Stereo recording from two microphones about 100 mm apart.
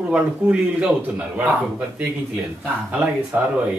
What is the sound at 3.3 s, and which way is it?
Speech, 20° right (ahead or behind).